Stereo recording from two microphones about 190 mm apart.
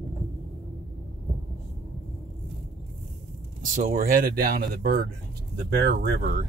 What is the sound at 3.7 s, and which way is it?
Speech, 45° right (ahead or behind).